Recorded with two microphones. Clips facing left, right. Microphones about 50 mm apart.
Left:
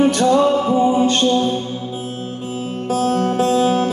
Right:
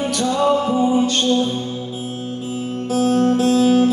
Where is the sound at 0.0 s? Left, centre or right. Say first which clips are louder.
Left 5 dB; left.